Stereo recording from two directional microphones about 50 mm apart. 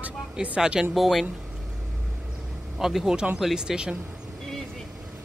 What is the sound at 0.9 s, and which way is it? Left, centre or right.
Speech, centre.